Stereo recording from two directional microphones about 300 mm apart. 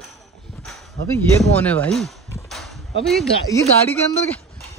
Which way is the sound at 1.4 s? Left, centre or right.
Centre.